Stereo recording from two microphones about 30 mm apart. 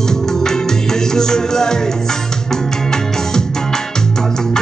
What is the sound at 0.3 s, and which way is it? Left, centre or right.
Music, centre.